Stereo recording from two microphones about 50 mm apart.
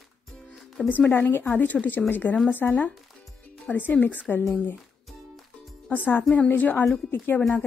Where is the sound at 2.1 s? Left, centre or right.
Left.